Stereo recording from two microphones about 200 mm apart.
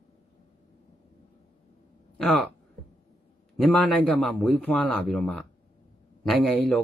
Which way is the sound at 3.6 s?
5° left (ahead or behind).